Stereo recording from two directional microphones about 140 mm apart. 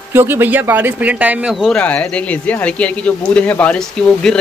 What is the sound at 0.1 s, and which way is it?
Speech, 15° right (ahead or behind).